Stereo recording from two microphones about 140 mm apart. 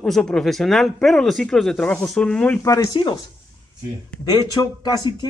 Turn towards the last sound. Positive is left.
turn(degrees=30)  # may be behind; listen again after turning